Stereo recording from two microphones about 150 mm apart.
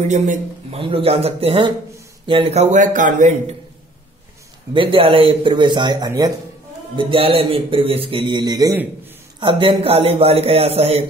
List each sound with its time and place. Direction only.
0.0 s a man's voice: 50° right (ahead or behind)
0.7 s a man's voice: 40° right (ahead or behind); by 3.5 s 55° right (ahead or behind)
4.7 s speech: 35° right (ahead or behind)
7.0 s speech: 35° right (ahead or behind)